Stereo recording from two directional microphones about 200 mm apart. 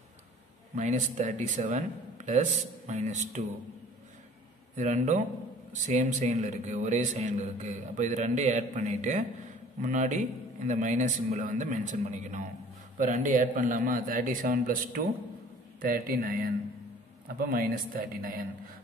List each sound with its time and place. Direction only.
0.7 s a man's voice: 40° right (ahead or behind)
4.7 s a man's voice: 40° right (ahead or behind)